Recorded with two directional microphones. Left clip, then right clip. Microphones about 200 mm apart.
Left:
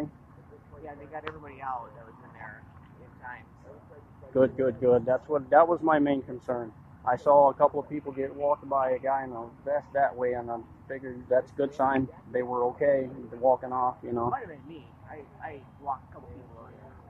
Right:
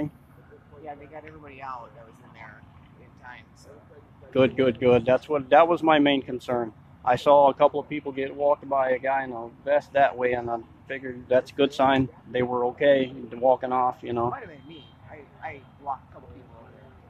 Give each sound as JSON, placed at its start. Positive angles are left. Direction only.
{"t": 0.8, "sound": "speech", "side_deg": -60}
{"t": 3.2, "sound": "speech", "side_deg": -60}
{"t": 4.3, "sound": "speech", "side_deg": -35}
{"t": 6.4, "sound": "speech", "side_deg": -40}
{"t": 14.0, "sound": "speech", "side_deg": -25}
{"t": 14.3, "sound": "speech", "side_deg": -60}
{"t": 15.4, "sound": "speech", "side_deg": -45}